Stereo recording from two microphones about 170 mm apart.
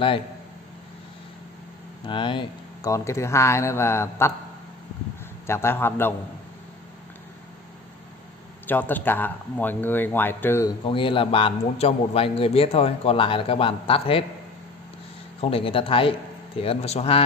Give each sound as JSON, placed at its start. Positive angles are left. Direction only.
{"t": 2.0, "sound": "speech", "side_deg": 30}
{"t": 5.5, "sound": "speech", "side_deg": 15}
{"t": 8.6, "sound": "speech", "side_deg": 10}
{"t": 10.9, "sound": "a man's voice", "side_deg": 30}
{"t": 15.4, "sound": "a man's voice", "side_deg": 35}